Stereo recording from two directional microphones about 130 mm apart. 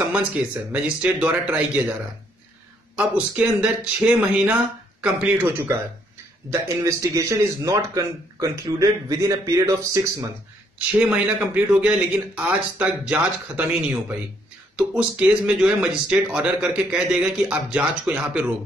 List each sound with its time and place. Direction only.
0.7 s speech: 10° right (ahead or behind)
3.0 s speech: 10° right (ahead or behind)
6.5 s a man's voice: 25° right (ahead or behind)
10.9 s speech: 10° right (ahead or behind)